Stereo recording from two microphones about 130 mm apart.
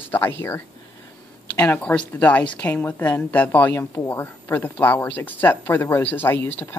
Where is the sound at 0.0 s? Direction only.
15° left (ahead or behind).